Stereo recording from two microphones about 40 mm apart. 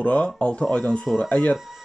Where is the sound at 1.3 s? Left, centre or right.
Left.